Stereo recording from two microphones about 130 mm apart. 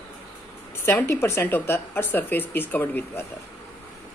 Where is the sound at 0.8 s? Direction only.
20° left (ahead or behind).